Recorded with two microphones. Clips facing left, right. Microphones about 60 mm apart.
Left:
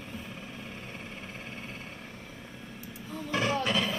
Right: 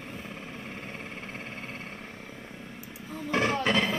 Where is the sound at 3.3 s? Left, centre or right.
Right.